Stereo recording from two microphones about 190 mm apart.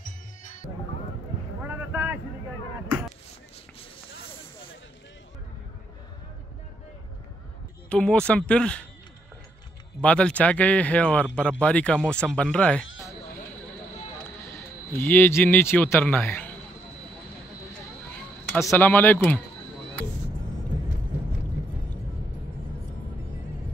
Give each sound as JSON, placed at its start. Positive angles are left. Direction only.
{"t": 1.6, "sound": "boat", "side_deg": -10}
{"t": 7.9, "sound": "speech", "side_deg": 5}
{"t": 10.0, "sound": "speech", "side_deg": 5}
{"t": 14.9, "sound": "speech", "side_deg": 10}
{"t": 18.7, "sound": "speech", "side_deg": 10}